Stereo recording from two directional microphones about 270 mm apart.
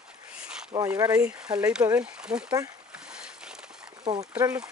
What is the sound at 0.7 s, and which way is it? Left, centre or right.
Speech, centre.